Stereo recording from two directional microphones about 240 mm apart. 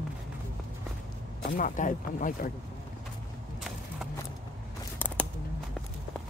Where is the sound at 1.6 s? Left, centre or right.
Left.